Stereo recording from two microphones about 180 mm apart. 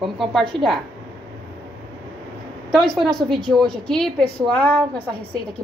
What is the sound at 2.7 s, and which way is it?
A woman's voice, centre (ahead or behind).